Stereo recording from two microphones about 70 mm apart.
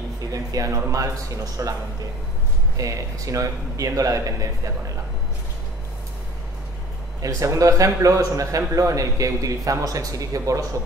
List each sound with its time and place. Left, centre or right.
0.3 s speech: right
2.8 s a man's voice: right
7.2 s a man's voice: right